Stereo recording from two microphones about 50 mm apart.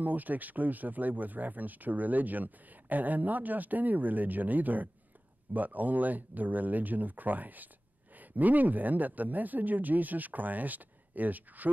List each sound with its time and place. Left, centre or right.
0.0 s speech: right